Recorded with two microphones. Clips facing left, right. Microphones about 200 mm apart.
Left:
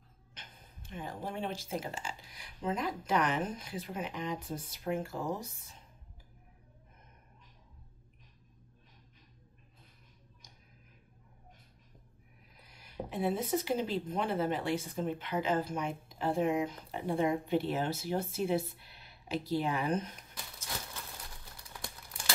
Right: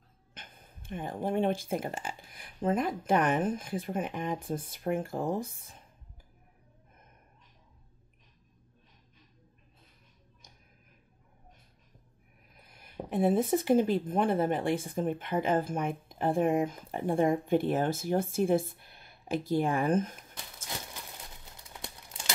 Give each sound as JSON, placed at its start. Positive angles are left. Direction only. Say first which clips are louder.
{"t": 0.3, "sound": "speech", "louder": "right 3 dB", "side_deg": -50}
{"t": 12.5, "sound": "speech", "louder": "even", "side_deg": -55}
{"t": 21.8, "sound": "crumpling", "louder": "right 1 dB", "side_deg": -20}